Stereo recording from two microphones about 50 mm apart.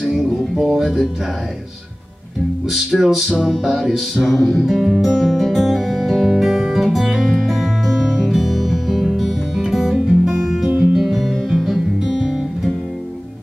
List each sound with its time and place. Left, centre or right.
0.0 s music: centre
2.7 s music: centre